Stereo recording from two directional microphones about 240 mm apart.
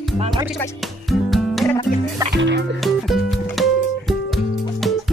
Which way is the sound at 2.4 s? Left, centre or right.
Right.